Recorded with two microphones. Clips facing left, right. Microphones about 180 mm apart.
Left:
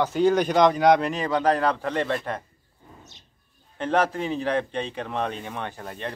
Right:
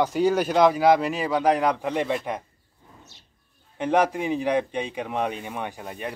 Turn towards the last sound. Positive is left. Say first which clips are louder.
# right 1 dB
turn(degrees=-10)  # may be behind; listen again after turning